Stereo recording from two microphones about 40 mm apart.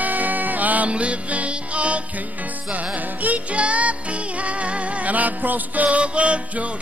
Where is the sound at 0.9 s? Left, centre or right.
Right.